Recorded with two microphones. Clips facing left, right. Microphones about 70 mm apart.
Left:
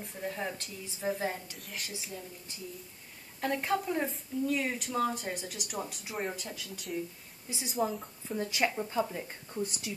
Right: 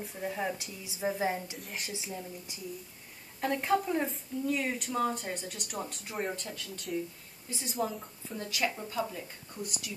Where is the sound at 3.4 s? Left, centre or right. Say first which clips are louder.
Right 2 dB; centre.